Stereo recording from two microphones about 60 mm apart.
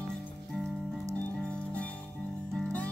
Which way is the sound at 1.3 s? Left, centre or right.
Centre.